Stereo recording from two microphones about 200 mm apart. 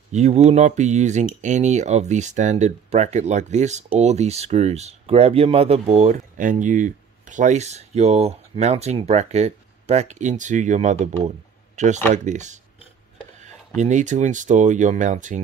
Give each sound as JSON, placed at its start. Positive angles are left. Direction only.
{"t": 0.1, "sound": "speech", "side_deg": -35}
{"t": 13.7, "sound": "speech", "side_deg": -35}